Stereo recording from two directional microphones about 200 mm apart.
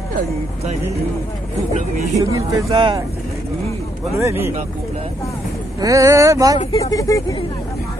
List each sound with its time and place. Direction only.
1.7 s speech: 35° right (ahead or behind)
2.1 s speech: 20° right (ahead or behind)
4.2 s speech: 10° right (ahead or behind)
5.8 s speech: 15° right (ahead or behind)
6.8 s speech: 15° left (ahead or behind)